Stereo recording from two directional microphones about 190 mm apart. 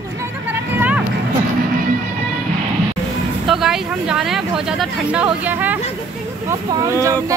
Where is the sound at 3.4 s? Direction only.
Centre (ahead or behind).